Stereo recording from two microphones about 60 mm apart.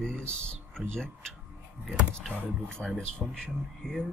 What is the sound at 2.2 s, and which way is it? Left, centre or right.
Speech, centre.